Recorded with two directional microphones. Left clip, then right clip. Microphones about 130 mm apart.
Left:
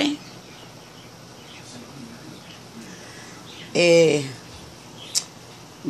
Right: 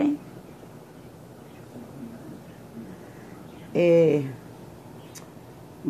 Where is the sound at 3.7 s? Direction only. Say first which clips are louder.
Left 3 dB; 15° left (ahead or behind).